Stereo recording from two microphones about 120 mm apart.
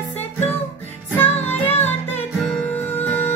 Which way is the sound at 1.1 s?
15° left (ahead or behind).